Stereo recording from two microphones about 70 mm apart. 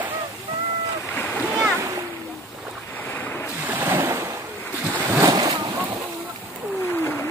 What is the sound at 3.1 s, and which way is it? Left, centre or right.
Ocean, left.